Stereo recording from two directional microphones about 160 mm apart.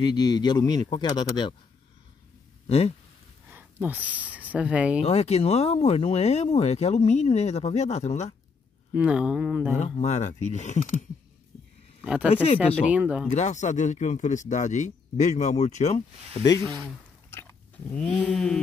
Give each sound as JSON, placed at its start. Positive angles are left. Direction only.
{"t": 0.0, "sound": "speech", "side_deg": 25}
{"t": 2.6, "sound": "speech", "side_deg": 40}
{"t": 3.4, "sound": "speech", "side_deg": -10}
{"t": 5.0, "sound": "speech", "side_deg": 40}
{"t": 8.9, "sound": "speech", "side_deg": -5}
{"t": 9.8, "sound": "speech", "side_deg": 40}
{"t": 12.0, "sound": "speech", "side_deg": -10}
{"t": 13.3, "sound": "speech", "side_deg": 50}
{"t": 17.3, "sound": "a sound", "side_deg": 15}